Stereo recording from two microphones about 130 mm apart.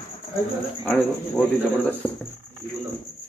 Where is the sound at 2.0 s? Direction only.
15° left (ahead or behind).